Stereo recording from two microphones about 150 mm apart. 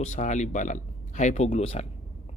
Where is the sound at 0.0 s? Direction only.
50° left (ahead or behind).